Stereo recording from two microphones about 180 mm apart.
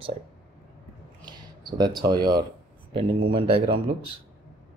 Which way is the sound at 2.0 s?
25° right (ahead or behind).